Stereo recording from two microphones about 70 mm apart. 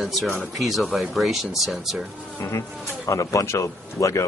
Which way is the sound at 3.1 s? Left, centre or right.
Left.